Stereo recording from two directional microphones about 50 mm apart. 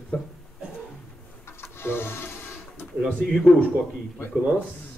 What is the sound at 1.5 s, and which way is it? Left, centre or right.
Printer, left.